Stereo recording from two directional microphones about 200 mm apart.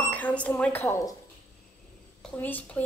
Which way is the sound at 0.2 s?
5° left (ahead or behind).